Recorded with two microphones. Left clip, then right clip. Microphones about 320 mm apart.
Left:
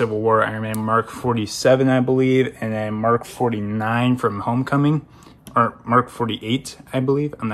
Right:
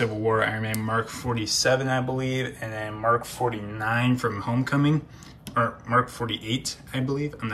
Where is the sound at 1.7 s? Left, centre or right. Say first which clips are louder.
Left 8 dB; left.